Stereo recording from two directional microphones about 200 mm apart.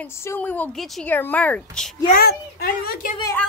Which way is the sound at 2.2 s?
50° left (ahead or behind).